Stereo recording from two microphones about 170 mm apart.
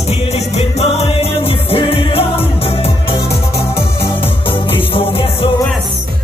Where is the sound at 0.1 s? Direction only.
40° left (ahead or behind).